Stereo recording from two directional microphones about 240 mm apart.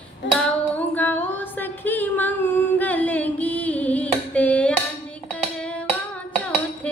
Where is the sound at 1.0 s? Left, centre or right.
Centre.